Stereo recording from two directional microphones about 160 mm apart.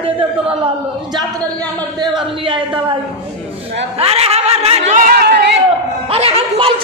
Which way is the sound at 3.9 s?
40° right (ahead or behind).